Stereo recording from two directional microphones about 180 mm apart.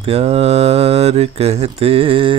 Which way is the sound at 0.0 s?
35° right (ahead or behind).